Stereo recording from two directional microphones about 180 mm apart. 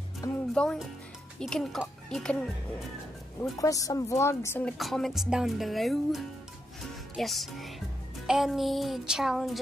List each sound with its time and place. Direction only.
0.2 s music: 20° left (ahead or behind)
0.6 s speech: centre (ahead or behind)
3.5 s a woman's voice: 20° left (ahead or behind)
4.7 s speech: centre (ahead or behind)
7.2 s music: centre (ahead or behind)
8.3 s speech: centre (ahead or behind)